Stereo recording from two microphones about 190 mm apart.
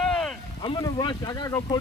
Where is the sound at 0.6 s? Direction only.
25° left (ahead or behind).